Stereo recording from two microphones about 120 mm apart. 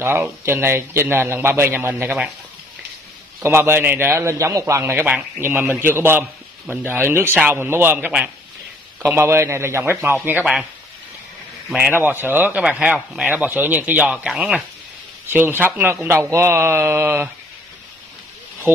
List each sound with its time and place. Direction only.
0.0 s a man's voice: 20° right (ahead or behind)
3.4 s a man's voice: 20° right (ahead or behind)
10.4 s speech: 5° right (ahead or behind)
11.9 s a man's voice: 15° right (ahead or behind)